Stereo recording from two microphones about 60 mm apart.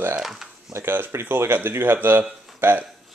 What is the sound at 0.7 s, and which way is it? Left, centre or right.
A man's voice, right.